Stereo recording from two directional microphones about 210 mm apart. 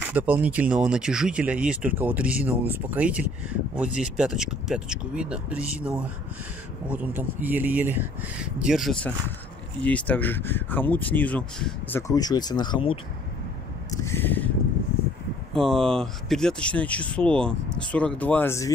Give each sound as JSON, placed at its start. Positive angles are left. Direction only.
{"t": 0.0, "sound": "speech", "side_deg": -10}
{"t": 12.1, "sound": "speech", "side_deg": 20}
{"t": 13.8, "sound": "a sound", "side_deg": 10}
{"t": 15.5, "sound": "speech", "side_deg": 0}